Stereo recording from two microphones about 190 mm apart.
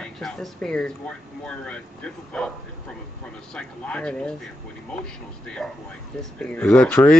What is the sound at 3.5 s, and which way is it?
Speech, 5° left (ahead or behind).